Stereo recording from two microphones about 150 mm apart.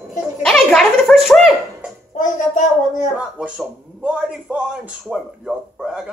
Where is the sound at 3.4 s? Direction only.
5° right (ahead or behind).